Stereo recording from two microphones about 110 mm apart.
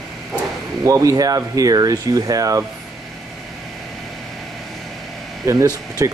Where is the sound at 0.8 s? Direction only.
30° right (ahead or behind).